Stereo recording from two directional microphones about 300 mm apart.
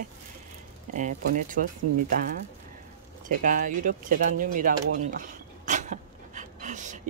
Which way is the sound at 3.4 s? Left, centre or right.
Right.